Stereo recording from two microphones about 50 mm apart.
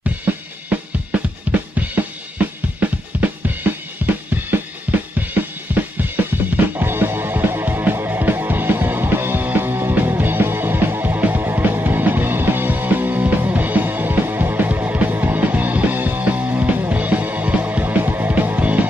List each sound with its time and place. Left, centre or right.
1.5 s drum kit: right
6.2 s drum kit: right
6.5 s music: right
17.8 s music: right
18.6 s music: right